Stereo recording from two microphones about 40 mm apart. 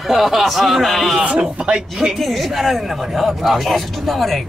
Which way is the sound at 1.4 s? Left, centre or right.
Right.